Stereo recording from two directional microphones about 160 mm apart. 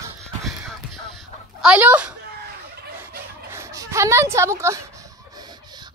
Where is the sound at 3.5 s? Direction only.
15° right (ahead or behind).